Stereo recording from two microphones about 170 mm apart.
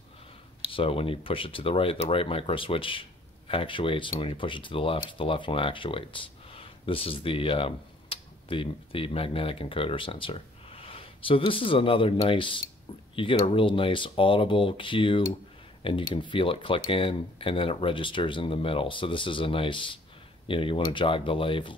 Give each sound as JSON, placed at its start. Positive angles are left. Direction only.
{"t": 0.7, "sound": "speech", "side_deg": 30}